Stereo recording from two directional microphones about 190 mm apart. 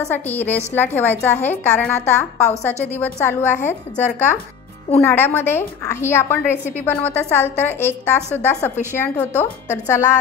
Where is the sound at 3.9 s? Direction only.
40° left (ahead or behind).